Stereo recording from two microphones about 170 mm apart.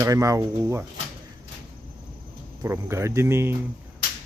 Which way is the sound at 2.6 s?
15° right (ahead or behind).